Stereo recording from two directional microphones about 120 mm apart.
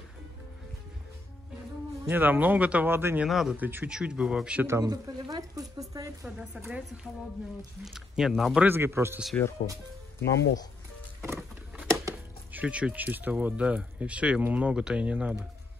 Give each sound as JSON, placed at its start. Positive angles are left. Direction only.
{"t": 2.0, "sound": "speech", "side_deg": -15}
{"t": 3.3, "sound": "speech", "side_deg": 0}
{"t": 3.5, "sound": "speech", "side_deg": -15}
{"t": 4.6, "sound": "speech", "side_deg": -25}
{"t": 6.2, "sound": "speech", "side_deg": -5}
{"t": 7.8, "sound": "speech", "side_deg": 0}
{"t": 8.5, "sound": "speech", "side_deg": -20}
{"t": 10.2, "sound": "speech", "side_deg": 35}
{"t": 11.3, "sound": "a sound", "side_deg": -10}
{"t": 12.5, "sound": "speech", "side_deg": -10}